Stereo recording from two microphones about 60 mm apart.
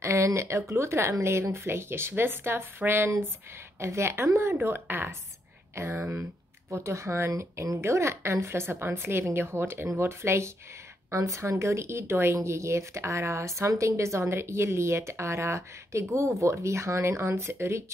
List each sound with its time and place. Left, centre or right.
0.0 s speech: right
3.8 s speech: right
4.6 s speech: right
6.7 s speech: right
11.1 s speech: right